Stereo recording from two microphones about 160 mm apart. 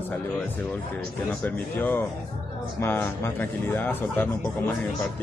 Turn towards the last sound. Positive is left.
turn(degrees=10)  # may be behind; listen again after turning